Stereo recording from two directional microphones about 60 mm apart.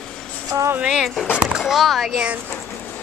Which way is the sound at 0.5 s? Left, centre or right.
Right.